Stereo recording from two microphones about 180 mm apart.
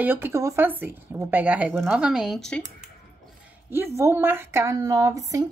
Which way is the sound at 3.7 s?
15° right (ahead or behind).